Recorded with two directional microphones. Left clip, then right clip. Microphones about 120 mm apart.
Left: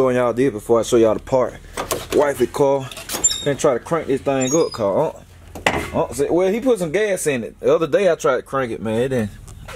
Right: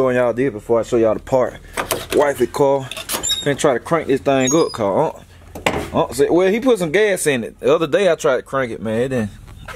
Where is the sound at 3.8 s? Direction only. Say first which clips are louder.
Right 3 dB; 30° right (ahead or behind).